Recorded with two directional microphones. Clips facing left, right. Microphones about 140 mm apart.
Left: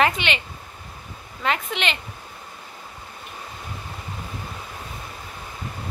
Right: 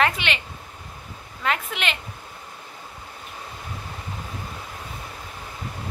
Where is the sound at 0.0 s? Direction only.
Centre (ahead or behind).